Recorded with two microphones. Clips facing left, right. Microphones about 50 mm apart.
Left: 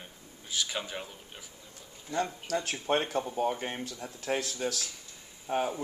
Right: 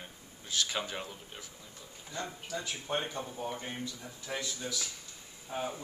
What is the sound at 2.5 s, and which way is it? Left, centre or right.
Speech, left.